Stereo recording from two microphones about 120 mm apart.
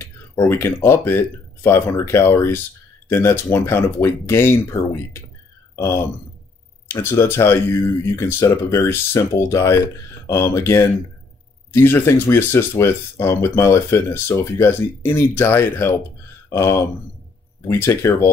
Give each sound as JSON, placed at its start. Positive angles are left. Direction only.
{"t": 0.0, "sound": "speech", "side_deg": 20}
{"t": 6.9, "sound": "speech", "side_deg": 20}